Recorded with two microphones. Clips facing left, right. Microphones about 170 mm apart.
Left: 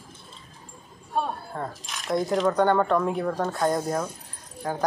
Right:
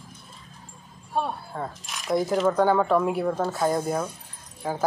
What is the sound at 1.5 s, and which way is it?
Speech, centre (ahead or behind).